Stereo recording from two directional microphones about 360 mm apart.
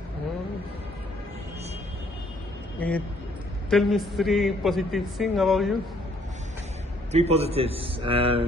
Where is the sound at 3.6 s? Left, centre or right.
Centre.